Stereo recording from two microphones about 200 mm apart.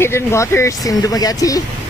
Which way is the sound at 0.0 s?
15° left (ahead or behind).